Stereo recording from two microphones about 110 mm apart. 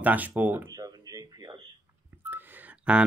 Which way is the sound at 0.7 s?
35° right (ahead or behind).